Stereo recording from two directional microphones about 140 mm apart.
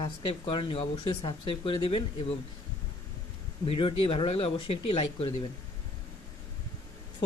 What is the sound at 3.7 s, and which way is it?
Speech, 40° left (ahead or behind).